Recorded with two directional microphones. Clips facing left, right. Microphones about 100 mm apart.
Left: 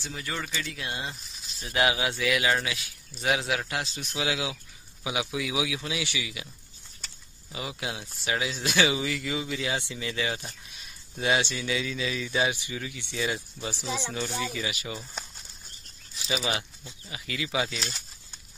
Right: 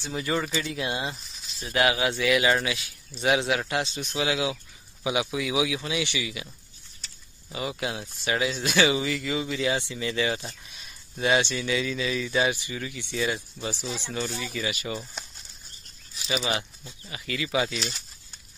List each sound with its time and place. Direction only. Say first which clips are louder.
0.0 s speech: right 7 dB; 20° right (ahead or behind)
1.6 s speech: right 2 dB; 10° left (ahead or behind)
7.5 s a man's voice: right 4 dB; 5° left (ahead or behind)
16.2 s speech: right 2 dB; centre (ahead or behind)